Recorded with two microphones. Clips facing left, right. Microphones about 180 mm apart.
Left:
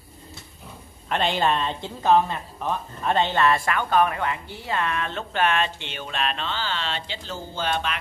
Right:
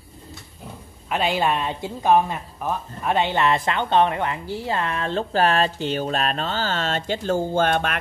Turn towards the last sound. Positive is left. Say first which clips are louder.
# right 6 dB
turn(degrees=-55)  # may be behind; listen again after turning